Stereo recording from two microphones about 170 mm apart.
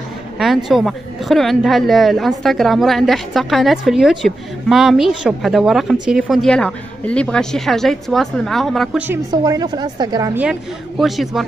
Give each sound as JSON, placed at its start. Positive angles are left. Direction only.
{"t": 0.7, "sound": "a woman's voice", "side_deg": 0}
{"t": 9.3, "sound": "a woman's voice", "side_deg": -25}
{"t": 10.3, "sound": "a woman's voice", "side_deg": -5}